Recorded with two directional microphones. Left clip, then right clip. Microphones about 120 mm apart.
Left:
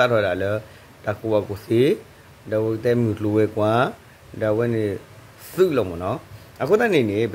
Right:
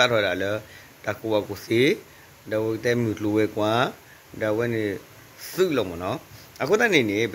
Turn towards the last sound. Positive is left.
turn(degrees=10)  # may be behind; listen again after turning